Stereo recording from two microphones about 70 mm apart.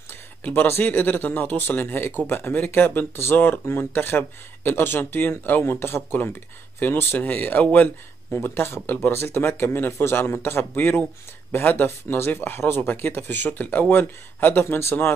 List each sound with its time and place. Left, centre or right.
0.4 s speech: left